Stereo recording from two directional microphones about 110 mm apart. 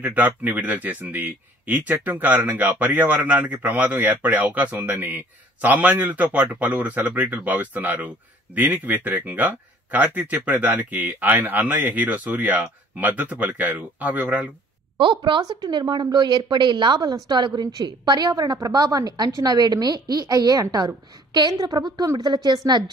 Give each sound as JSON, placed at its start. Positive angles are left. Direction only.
{"t": 0.0, "sound": "a man's voice", "side_deg": -15}
{"t": 15.0, "sound": "a woman's voice", "side_deg": -50}